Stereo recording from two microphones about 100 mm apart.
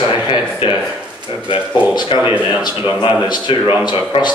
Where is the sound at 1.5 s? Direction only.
55° left (ahead or behind).